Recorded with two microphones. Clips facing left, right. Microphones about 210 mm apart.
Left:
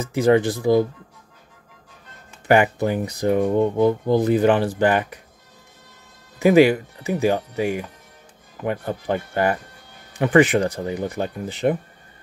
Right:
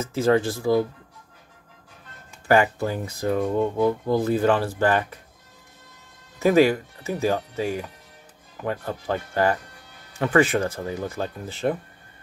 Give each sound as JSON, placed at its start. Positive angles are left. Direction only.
{"t": 0.0, "sound": "speech", "side_deg": 15}
{"t": 2.4, "sound": "speech", "side_deg": 20}
{"t": 6.4, "sound": "speech", "side_deg": 15}